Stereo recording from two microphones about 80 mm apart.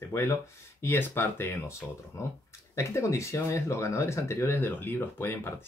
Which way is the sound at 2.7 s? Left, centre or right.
Left.